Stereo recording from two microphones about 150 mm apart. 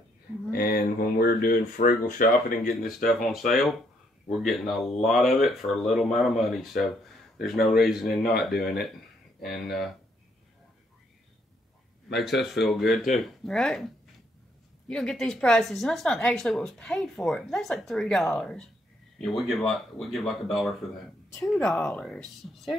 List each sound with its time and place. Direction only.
0.5 s a sound: 90° left
1.2 s speech: 75° left (ahead or behind)
2.9 s speech: centre (ahead or behind)
12.2 s speech: centre (ahead or behind)
14.9 s speech: 5° left (ahead or behind)